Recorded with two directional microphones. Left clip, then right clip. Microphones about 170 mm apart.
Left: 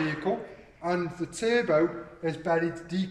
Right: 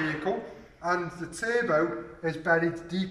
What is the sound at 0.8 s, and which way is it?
A man's voice, 25° left (ahead or behind).